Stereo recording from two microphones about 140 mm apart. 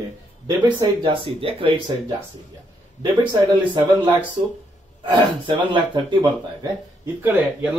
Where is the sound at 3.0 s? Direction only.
30° right (ahead or behind).